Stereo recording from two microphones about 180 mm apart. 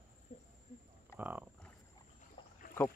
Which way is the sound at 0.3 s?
40° left (ahead or behind).